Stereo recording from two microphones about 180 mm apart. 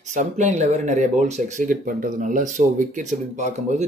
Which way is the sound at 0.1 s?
40° right (ahead or behind).